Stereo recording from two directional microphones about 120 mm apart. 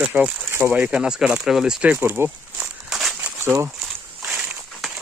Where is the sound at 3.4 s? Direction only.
20° right (ahead or behind).